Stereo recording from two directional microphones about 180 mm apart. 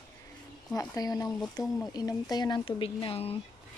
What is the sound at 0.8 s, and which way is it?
Speech, 20° left (ahead or behind).